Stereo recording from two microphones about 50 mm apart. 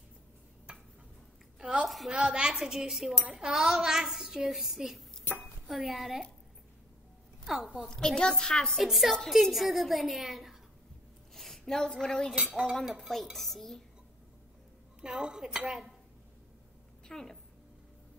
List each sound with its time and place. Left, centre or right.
1.6 s a sound: right
2.0 s a woman's voice: centre
7.4 s a woman's voice: centre
7.9 s a woman's voice: centre
8.7 s a woman's voice: centre
15.0 s a woman's voice: centre
17.1 s a woman's voice: centre